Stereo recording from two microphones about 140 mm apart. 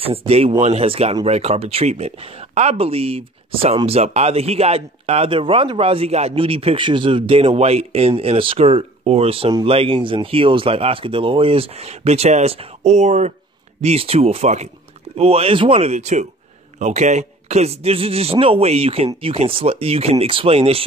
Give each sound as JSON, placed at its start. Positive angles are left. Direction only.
{"t": 0.0, "sound": "speech", "side_deg": -45}